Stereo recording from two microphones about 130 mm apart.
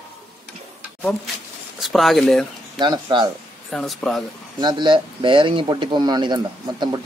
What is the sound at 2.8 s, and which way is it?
Speech, 35° right (ahead or behind).